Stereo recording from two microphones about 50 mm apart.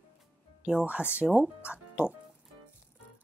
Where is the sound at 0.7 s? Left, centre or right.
Right.